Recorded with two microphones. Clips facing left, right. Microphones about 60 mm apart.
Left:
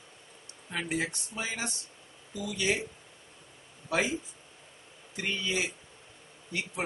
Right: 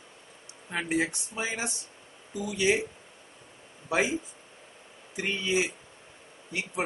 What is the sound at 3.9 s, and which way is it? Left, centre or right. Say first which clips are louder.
Speech: right 2 dB; centre.